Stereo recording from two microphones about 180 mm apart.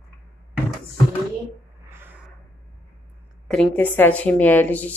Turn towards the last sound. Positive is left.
turn(degrees=10)  # may be behind; listen again after turning